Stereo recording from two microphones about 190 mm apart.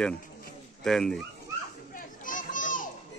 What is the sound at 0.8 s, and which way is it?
Speech, centre (ahead or behind).